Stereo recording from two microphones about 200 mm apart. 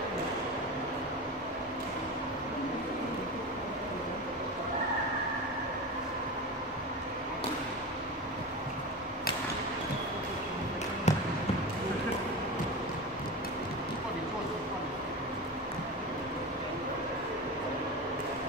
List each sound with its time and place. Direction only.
11.1 s basketball bounce: 35° left (ahead or behind)